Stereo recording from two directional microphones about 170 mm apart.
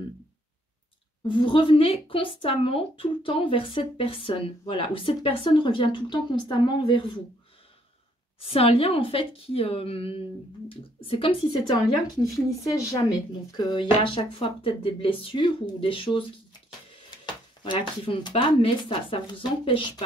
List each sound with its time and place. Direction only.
1.2 s speech: 30° left (ahead or behind)
8.4 s speech: 35° left (ahead or behind)
11.6 s a woman's voice: 20° left (ahead or behind)
17.6 s speech: 30° left (ahead or behind)